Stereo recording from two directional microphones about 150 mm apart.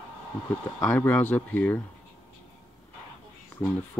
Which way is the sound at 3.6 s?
15° left (ahead or behind).